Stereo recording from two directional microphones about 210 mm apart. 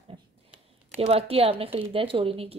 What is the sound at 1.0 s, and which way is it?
A woman's voice, 30° right (ahead or behind).